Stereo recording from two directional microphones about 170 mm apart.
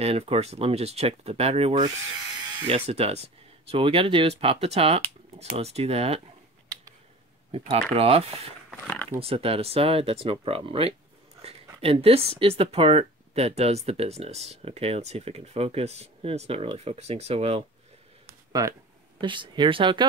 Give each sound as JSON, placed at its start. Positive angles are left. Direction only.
{"t": 0.0, "sound": "speech", "side_deg": -35}
{"t": 7.5, "sound": "speech", "side_deg": -35}
{"t": 8.6, "sound": "a sound", "side_deg": 5}
{"t": 9.2, "sound": "speech", "side_deg": -35}
{"t": 18.2, "sound": "a sound", "side_deg": -20}
{"t": 19.2, "sound": "speech", "side_deg": -30}